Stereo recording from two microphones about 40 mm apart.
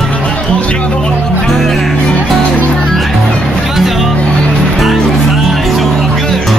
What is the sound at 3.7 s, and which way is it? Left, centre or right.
Music, centre.